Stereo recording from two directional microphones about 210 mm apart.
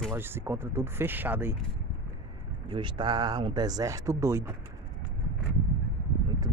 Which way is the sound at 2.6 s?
20° right (ahead or behind).